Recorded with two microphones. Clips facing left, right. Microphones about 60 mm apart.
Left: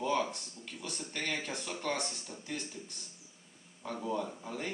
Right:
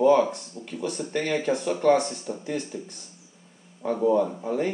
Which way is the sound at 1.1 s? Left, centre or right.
Right.